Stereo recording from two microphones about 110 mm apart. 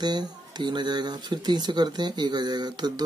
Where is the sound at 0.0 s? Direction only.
40° right (ahead or behind).